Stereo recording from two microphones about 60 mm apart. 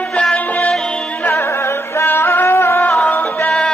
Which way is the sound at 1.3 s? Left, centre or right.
Left.